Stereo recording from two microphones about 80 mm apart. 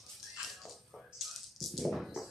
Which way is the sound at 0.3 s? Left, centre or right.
Centre.